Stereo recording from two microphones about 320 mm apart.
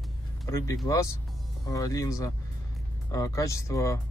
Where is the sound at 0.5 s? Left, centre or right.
Centre.